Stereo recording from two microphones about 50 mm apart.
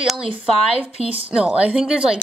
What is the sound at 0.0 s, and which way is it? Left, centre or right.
Speech, centre.